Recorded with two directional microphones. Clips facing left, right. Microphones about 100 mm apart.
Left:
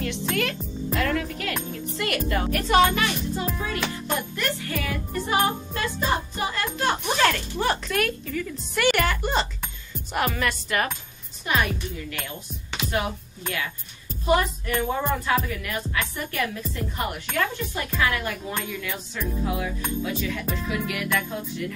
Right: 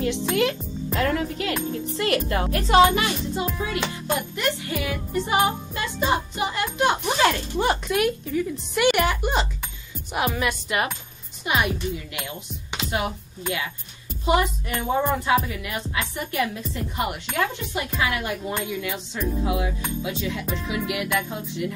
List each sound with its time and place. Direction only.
0.0 s a woman's voice: 25° right (ahead or behind)
0.3 s music: 15° right (ahead or behind)
0.9 s music: 30° right (ahead or behind); by 9.5 s 10° right (ahead or behind)
10.1 s speech: 10° right (ahead or behind)
14.2 s music: 20° right (ahead or behind)
18.7 s speech: 15° right (ahead or behind)
20.0 s music: 20° right (ahead or behind)